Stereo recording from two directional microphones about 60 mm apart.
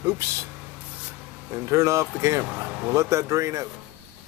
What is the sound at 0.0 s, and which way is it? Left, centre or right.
Speech, right.